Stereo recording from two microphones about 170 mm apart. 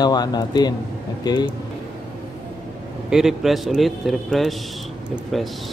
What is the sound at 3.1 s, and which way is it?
A man's voice, 5° right (ahead or behind).